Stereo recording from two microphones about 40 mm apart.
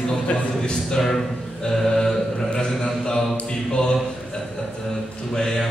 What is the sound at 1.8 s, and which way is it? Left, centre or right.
Mantra, centre.